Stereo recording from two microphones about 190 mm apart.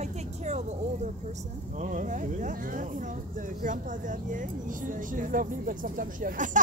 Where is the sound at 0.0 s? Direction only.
35° right (ahead or behind).